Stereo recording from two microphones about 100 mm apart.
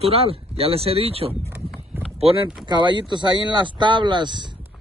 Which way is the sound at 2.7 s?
50° right (ahead or behind).